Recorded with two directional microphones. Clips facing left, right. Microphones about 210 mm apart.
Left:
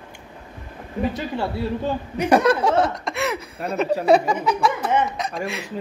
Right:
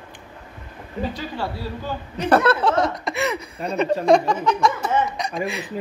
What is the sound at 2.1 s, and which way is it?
Speech, 10° left (ahead or behind).